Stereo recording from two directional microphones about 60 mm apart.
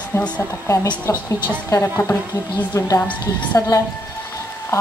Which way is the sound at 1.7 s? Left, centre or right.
Left.